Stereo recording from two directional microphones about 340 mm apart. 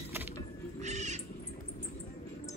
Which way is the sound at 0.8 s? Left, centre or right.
Centre.